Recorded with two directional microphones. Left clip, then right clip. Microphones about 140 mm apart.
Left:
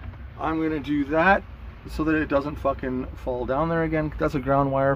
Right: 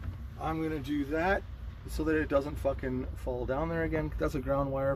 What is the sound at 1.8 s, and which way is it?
Speech, 15° left (ahead or behind).